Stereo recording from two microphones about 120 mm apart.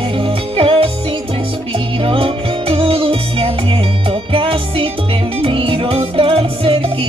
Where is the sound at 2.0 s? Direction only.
50° right (ahead or behind).